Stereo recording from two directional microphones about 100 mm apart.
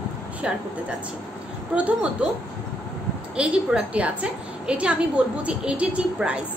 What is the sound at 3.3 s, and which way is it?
A woman's voice, 10° right (ahead or behind).